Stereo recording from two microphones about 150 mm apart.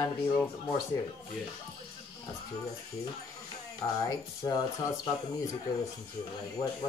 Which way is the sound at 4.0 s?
25° left (ahead or behind).